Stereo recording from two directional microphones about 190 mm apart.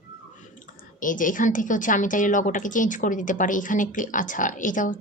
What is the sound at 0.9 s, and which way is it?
A woman's voice, 45° left (ahead or behind).